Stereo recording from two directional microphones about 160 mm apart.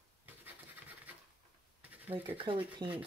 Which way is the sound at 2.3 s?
35° right (ahead or behind).